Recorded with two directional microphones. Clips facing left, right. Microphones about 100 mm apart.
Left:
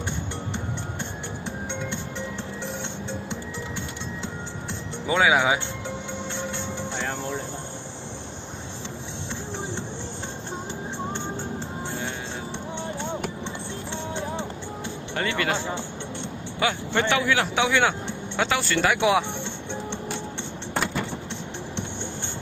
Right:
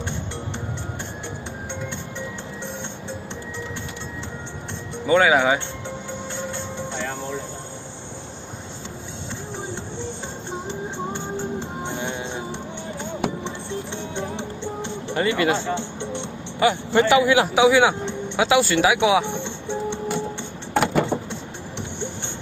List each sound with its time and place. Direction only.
5.0 s speech: centre (ahead or behind)
15.1 s speech: 5° right (ahead or behind)
16.5 s a man's voice: 5° right (ahead or behind)
19.2 s music: 15° right (ahead or behind)
20.7 s keys jangling: 80° right